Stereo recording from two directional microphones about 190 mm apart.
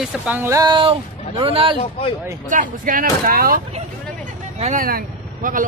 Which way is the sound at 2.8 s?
45° right (ahead or behind).